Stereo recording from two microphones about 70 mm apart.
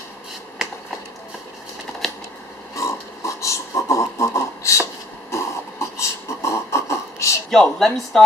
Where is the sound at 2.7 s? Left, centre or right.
Left.